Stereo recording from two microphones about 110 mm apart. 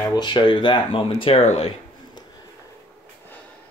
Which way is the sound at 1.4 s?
70° left (ahead or behind).